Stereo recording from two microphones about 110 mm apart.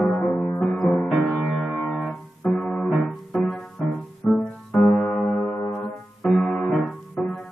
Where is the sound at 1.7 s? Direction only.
15° left (ahead or behind).